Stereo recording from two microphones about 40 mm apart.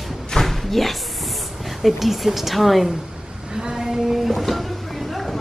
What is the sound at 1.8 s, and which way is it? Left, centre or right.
A woman's voice, centre.